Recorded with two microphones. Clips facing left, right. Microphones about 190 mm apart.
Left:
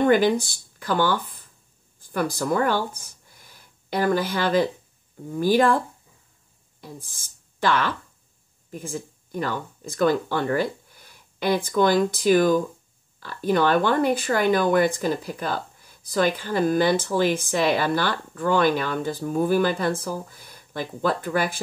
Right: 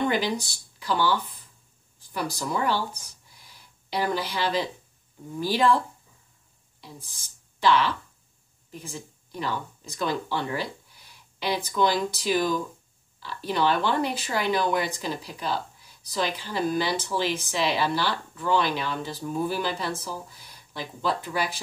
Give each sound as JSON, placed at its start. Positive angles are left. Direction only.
{"t": 0.0, "sound": "speech", "side_deg": 50}
{"t": 6.8, "sound": "speech", "side_deg": 50}